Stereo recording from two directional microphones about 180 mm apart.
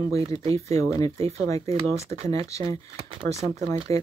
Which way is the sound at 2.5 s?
15° left (ahead or behind).